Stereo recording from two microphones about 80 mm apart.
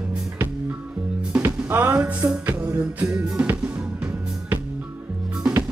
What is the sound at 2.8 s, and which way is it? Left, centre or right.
Music, centre.